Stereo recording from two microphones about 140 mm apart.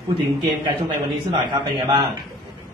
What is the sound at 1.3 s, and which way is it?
Speech, 35° right (ahead or behind).